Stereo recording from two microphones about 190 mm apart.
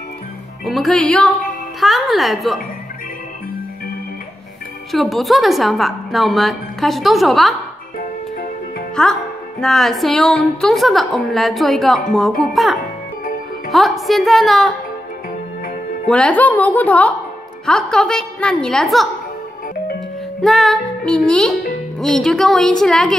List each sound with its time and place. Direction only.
0.7 s a woman's voice: centre (ahead or behind)
4.9 s a woman's voice: centre (ahead or behind)
8.0 s music: 45° left (ahead or behind)
9.6 s a woman's voice: centre (ahead or behind)
16.1 s a woman's voice: 5° left (ahead or behind)
20.4 s a woman's voice: centre (ahead or behind)